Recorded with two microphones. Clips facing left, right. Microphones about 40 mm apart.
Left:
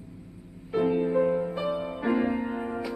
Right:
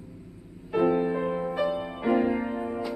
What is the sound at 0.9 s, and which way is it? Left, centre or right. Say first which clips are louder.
Music: left 3 dB; centre.